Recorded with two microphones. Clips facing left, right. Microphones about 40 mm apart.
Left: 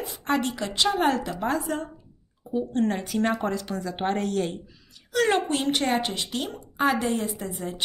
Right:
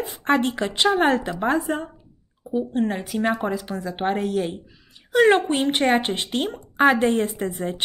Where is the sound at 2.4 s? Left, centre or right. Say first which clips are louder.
Right 2 dB; centre.